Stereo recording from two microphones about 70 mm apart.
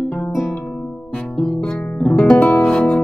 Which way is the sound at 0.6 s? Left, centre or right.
Centre.